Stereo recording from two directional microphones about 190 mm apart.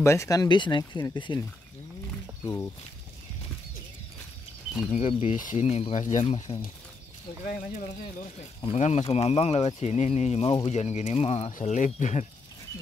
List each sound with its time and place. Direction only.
0.0 s speech: 15° left (ahead or behind)
2.4 s speech: 15° left (ahead or behind)
4.9 s speech: 35° left (ahead or behind)
7.4 s speech: 45° left (ahead or behind)